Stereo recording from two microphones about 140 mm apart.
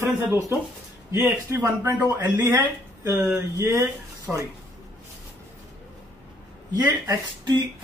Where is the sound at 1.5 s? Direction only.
20° right (ahead or behind).